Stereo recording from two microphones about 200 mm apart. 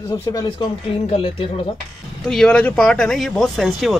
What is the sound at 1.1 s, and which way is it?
Speech, 30° left (ahead or behind).